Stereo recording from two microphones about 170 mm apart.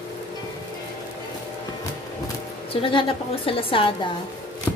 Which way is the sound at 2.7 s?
30° left (ahead or behind).